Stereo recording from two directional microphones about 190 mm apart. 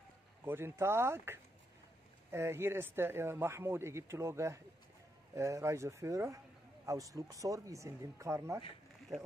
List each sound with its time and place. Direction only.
0.5 s a man's voice: 10° right (ahead or behind)